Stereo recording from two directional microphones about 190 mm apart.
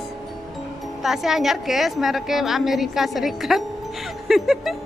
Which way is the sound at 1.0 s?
Centre (ahead or behind).